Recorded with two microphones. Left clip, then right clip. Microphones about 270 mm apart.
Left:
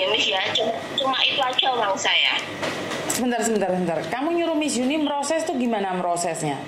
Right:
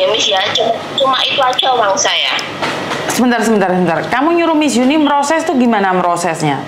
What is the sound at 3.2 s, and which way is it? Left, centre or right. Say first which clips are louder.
A woman's voice: right 10 dB; right.